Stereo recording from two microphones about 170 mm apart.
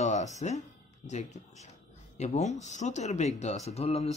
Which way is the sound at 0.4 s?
45° left (ahead or behind).